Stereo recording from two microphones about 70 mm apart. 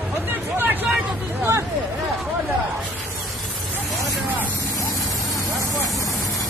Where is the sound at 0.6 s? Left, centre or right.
Right.